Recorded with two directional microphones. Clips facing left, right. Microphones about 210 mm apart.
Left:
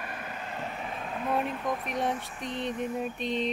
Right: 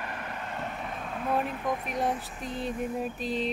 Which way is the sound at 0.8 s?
Centre (ahead or behind).